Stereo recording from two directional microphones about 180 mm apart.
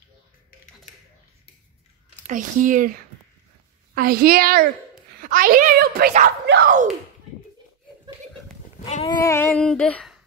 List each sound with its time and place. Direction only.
2.2 s a woman's voice: 45° right (ahead or behind)
3.9 s a woman's voice: 55° right (ahead or behind)
6.2 s speech: 70° right (ahead or behind)
8.8 s speech: 35° left (ahead or behind)
9.2 s a sound: 15° left (ahead or behind)